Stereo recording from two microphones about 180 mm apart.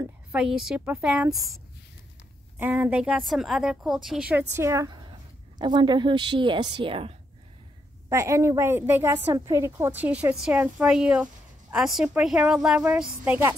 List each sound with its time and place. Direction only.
0.3 s a woman's voice: 5° right (ahead or behind)
2.6 s a woman's voice: 10° right (ahead or behind); by 7.2 s 30° right (ahead or behind)
8.1 s a woman's voice: 15° right (ahead or behind)